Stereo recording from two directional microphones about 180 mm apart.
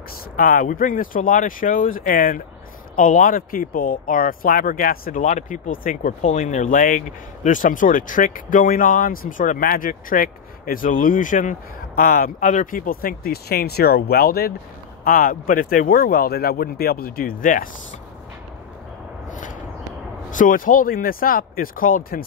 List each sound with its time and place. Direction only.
0.4 s speech: 50° left (ahead or behind)
20.2 s speech: 45° left (ahead or behind)